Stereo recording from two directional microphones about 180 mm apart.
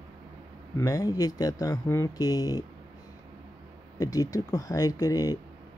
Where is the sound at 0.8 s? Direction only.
20° left (ahead or behind).